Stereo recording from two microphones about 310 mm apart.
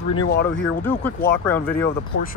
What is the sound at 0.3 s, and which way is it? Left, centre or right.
Speech, left.